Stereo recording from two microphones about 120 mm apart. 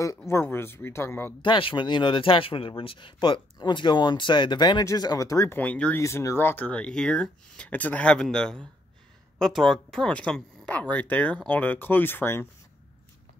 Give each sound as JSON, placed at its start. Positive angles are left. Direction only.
{"t": 0.3, "sound": "speech", "side_deg": 20}
{"t": 1.4, "sound": "speech", "side_deg": 45}
{"t": 5.6, "sound": "speech", "side_deg": 10}
{"t": 5.9, "sound": "speech", "side_deg": 25}